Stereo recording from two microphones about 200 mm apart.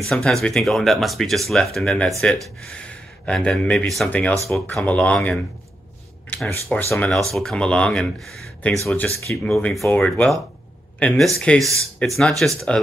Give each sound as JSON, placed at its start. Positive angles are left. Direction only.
{"t": 0.0, "sound": "speech", "side_deg": 0}